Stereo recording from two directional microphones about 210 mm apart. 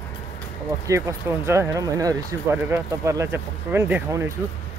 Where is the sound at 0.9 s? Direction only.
15° right (ahead or behind).